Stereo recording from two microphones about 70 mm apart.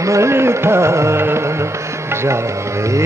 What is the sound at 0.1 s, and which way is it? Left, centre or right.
Music, right.